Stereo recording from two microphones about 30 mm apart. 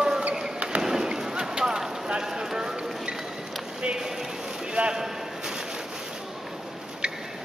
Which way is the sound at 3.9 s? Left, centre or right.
Right.